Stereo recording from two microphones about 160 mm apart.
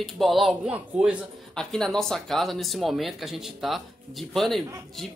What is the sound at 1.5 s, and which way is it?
A man's voice, 5° left (ahead or behind).